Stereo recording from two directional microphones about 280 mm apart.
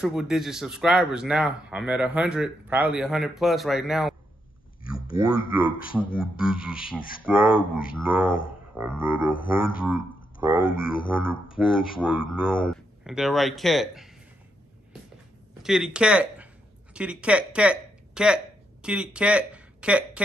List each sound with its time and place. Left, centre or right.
0.0 s speech: centre
5.0 s speech: left
6.3 s speech: centre
6.8 s speech: left
8.8 s a sound: centre
9.8 s speech: centre
10.6 s speech: left
11.5 s speech: centre
12.4 s speech: left
13.0 s speech: centre
15.6 s speech: centre